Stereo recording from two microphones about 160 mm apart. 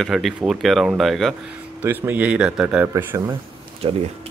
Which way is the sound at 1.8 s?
10° right (ahead or behind).